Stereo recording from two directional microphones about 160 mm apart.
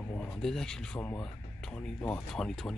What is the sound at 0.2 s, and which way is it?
Speech, 5° left (ahead or behind).